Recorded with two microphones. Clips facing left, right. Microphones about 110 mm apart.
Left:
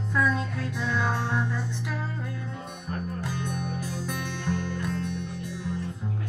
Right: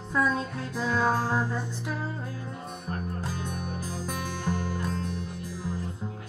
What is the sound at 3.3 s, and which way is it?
Music, 40° right (ahead or behind).